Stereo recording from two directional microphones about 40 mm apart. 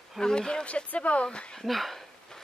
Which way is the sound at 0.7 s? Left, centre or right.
Left.